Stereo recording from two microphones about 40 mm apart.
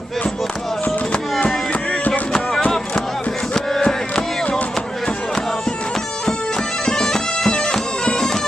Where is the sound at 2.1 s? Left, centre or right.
Centre.